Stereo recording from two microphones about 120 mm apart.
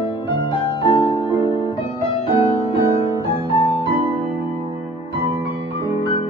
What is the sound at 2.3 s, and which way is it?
Music, 45° left (ahead or behind).